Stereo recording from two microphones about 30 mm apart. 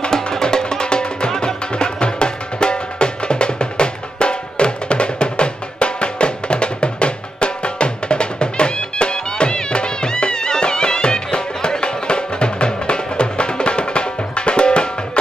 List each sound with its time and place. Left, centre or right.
0.1 s music: centre